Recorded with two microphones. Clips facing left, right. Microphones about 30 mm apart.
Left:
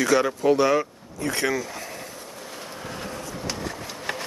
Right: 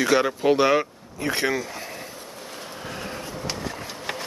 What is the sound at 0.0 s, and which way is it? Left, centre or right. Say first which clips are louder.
Speech: even; right.